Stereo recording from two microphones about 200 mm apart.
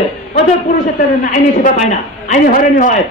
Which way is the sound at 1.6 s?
40° left (ahead or behind).